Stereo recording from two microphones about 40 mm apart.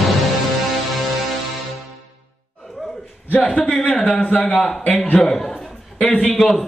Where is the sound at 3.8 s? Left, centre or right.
Left.